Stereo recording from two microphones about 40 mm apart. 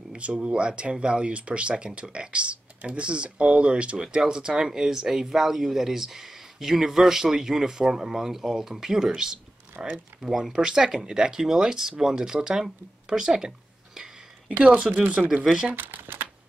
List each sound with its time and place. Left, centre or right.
0.1 s speech: right
10.2 s speech: centre
14.9 s speech: centre
15.2 s speech: centre
15.7 s speech: right